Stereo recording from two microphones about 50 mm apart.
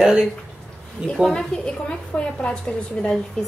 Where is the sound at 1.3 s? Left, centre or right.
Centre.